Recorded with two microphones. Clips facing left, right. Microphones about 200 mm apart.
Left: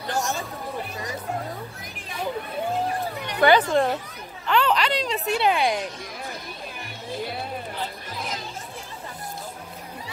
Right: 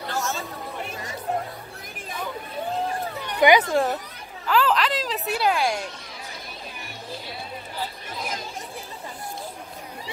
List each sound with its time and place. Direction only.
0.1 s chatter: 15° left (ahead or behind)
3.3 s speech: 15° right (ahead or behind)
3.7 s speech: centre (ahead or behind)
4.5 s a sound: centre (ahead or behind)